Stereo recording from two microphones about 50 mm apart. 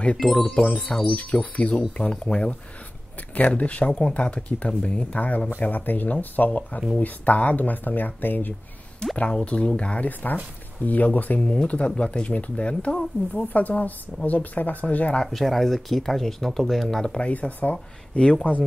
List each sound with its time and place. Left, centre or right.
0.2 s speech: centre
1.1 s speech: left
9.0 s speech: centre
15.2 s speech: centre
17.2 s speech: left